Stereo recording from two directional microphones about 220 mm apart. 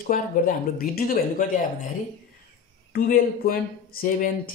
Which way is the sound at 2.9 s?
40° left (ahead or behind).